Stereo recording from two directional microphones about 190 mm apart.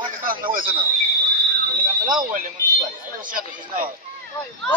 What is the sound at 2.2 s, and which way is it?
Speech, 45° right (ahead or behind).